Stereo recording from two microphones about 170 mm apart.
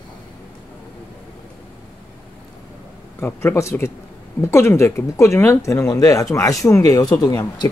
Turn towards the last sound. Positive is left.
turn(degrees=25)  # may be behind; listen again after turning